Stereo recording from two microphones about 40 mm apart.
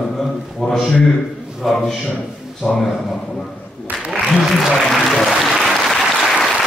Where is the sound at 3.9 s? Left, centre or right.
Right.